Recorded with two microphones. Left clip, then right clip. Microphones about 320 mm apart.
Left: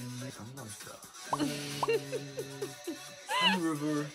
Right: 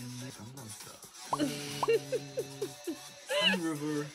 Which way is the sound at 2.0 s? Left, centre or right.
Centre.